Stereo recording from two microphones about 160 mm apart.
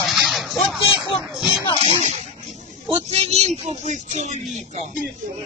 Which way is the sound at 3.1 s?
40° right (ahead or behind).